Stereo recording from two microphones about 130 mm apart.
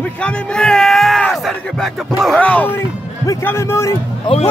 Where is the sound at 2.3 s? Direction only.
10° left (ahead or behind).